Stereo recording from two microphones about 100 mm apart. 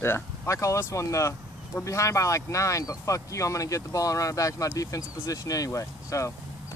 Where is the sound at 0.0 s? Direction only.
25° left (ahead or behind).